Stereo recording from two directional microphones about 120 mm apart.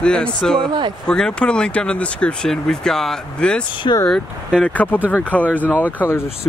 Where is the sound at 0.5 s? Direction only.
40° right (ahead or behind).